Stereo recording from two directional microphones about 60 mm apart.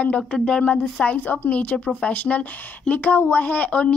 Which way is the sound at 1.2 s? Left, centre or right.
Left.